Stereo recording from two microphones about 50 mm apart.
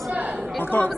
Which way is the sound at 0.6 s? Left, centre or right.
Left.